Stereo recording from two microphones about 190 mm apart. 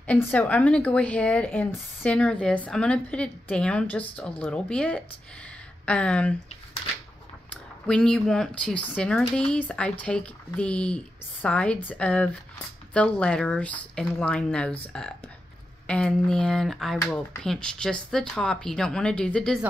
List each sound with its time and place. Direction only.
0.0 s a woman's voice: 10° left (ahead or behind)
7.8 s a woman's voice: 5° left (ahead or behind)